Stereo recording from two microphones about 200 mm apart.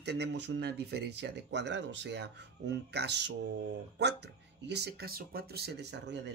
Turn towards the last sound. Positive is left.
turn(degrees=-55)  # may be behind; listen again after turning